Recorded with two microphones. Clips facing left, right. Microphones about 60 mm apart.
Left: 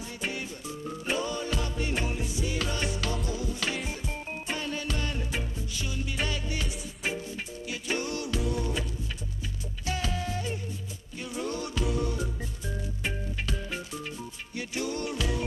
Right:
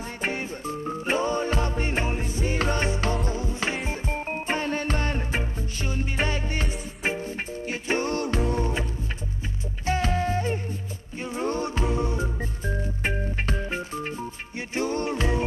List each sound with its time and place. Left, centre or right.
0.2 s music: right
9.8 s music: right